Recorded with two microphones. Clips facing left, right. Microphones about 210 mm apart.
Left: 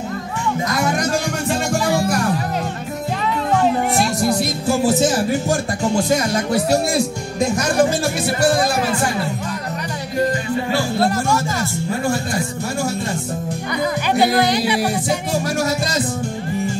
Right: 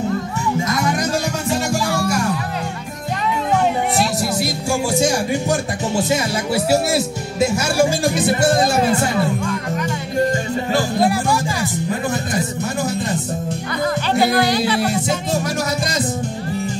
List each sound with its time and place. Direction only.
4.0 s music: centre (ahead or behind)
5.1 s speech: centre (ahead or behind)
11.0 s speech: 15° right (ahead or behind)
14.2 s music: 20° left (ahead or behind)